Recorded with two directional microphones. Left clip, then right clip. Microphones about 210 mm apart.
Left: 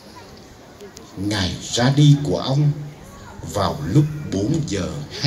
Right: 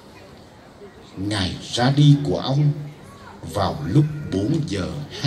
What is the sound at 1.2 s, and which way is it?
A man's voice, 30° left (ahead or behind).